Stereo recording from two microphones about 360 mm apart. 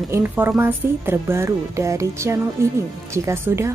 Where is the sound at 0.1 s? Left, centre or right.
Centre.